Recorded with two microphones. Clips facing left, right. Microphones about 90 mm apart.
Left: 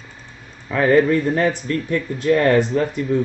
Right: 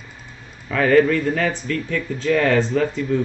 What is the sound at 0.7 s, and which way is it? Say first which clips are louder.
Speech: even; 20° left (ahead or behind).